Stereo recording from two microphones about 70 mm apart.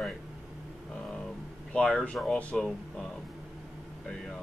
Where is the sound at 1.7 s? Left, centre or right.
Centre.